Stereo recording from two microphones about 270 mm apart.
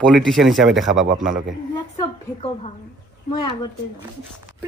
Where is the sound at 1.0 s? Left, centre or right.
Right.